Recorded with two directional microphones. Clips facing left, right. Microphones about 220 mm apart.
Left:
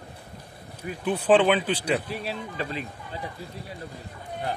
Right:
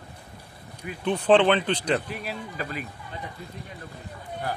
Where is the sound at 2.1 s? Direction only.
30° left (ahead or behind).